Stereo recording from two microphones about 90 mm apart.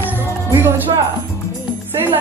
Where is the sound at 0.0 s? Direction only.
20° right (ahead or behind).